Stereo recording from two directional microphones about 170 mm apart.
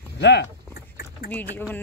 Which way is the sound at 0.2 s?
90° left.